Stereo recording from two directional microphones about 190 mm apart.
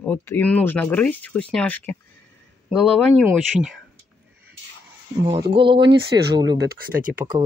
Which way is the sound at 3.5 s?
Centre (ahead or behind).